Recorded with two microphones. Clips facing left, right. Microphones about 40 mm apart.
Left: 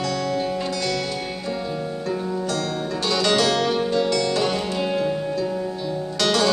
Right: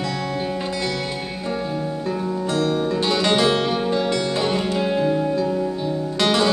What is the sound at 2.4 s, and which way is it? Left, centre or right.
Music, right.